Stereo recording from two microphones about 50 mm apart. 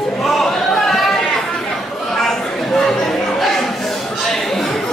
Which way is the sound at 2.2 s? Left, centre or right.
Centre.